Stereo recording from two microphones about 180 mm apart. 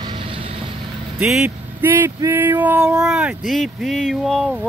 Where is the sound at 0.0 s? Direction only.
25° right (ahead or behind).